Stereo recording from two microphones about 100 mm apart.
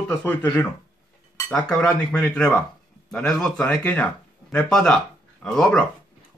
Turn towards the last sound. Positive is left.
turn(degrees=5)  # may be behind; listen again after turning